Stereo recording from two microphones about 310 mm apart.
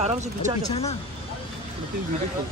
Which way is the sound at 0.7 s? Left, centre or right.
Centre.